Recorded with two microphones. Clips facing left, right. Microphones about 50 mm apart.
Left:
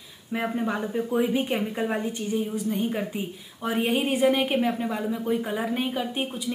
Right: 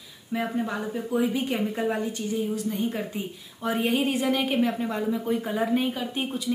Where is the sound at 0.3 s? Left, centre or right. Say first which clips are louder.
Left 1 dB; centre.